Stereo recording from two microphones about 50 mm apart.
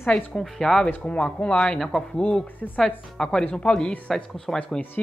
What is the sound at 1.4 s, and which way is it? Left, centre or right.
Speech, centre.